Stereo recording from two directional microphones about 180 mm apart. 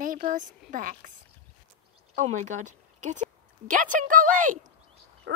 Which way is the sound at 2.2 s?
45° right (ahead or behind).